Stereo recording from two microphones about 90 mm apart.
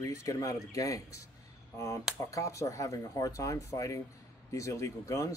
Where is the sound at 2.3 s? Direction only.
35° left (ahead or behind).